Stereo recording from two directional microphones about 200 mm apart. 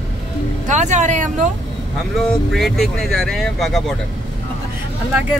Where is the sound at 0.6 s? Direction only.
35° right (ahead or behind).